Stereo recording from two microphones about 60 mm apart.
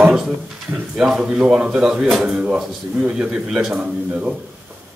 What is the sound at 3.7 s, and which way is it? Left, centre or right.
Speech, right.